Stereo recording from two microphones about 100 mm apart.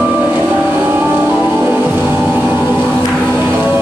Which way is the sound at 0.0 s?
10° right (ahead or behind).